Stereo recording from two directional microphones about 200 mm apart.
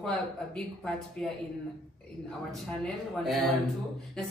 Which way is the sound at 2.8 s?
Centre (ahead or behind).